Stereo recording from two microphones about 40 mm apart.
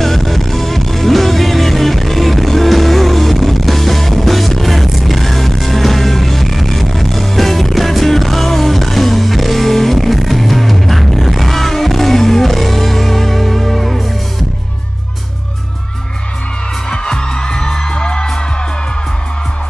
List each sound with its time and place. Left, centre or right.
0.0 s music: centre
16.9 s music: centre